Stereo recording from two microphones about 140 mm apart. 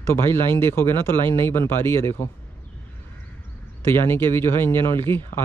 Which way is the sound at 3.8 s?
15° left (ahead or behind).